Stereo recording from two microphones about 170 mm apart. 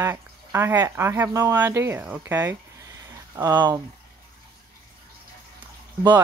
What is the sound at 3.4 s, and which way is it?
Speech, 20° right (ahead or behind).